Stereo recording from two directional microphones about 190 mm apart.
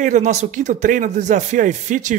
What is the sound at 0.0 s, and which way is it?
Speech, 40° right (ahead or behind).